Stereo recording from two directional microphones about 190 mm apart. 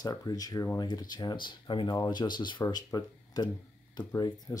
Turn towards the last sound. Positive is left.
turn(degrees=20)  # may be behind; listen again after turning